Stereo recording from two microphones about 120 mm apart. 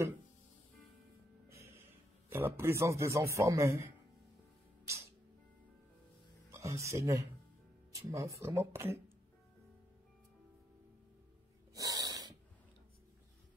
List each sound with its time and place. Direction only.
1.5 s music: 25° right (ahead or behind)
2.2 s a man's voice: 20° right (ahead or behind)
6.5 s a man's voice: 25° right (ahead or behind)
11.7 s snort: 30° right (ahead or behind)